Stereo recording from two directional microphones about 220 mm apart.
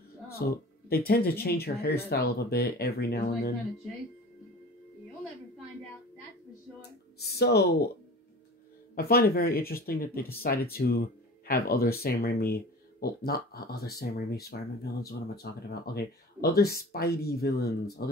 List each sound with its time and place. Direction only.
0.3 s speech: 45° left (ahead or behind)
6.8 s music: 50° left (ahead or behind)
8.9 s speech: 45° left (ahead or behind)